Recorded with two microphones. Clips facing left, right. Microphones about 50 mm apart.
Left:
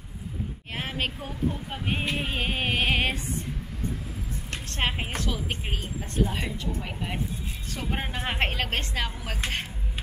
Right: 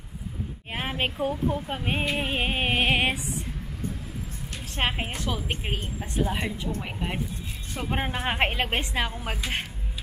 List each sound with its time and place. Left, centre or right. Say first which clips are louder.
0.7 s speech: right 3 dB; centre
4.6 s speech: right 2 dB; centre